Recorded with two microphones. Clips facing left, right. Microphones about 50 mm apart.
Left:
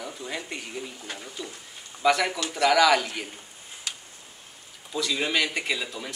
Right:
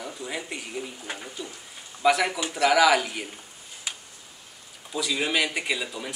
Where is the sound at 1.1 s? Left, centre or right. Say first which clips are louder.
Right 1 dB; centre.